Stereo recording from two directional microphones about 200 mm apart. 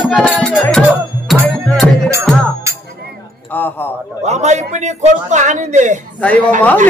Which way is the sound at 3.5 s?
10° left (ahead or behind).